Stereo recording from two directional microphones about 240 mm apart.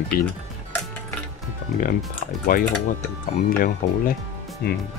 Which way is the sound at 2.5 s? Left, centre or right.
Left.